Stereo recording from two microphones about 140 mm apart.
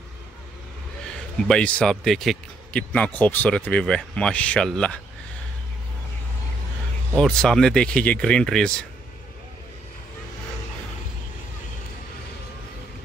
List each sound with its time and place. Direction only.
1.5 s speech: 10° left (ahead or behind)
7.2 s speech: 5° left (ahead or behind)